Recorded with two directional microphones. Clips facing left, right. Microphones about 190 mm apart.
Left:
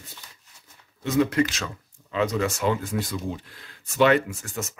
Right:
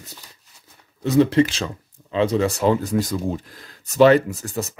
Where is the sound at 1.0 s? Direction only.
30° right (ahead or behind).